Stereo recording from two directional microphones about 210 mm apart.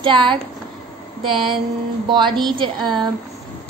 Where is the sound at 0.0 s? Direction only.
25° right (ahead or behind).